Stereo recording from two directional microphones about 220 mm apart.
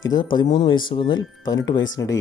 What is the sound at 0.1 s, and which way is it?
Speech, 20° left (ahead or behind).